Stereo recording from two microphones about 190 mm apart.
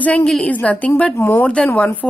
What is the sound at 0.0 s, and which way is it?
A woman's voice, 5° left (ahead or behind).